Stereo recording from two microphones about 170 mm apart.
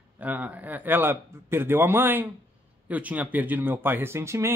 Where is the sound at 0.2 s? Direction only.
10° right (ahead or behind).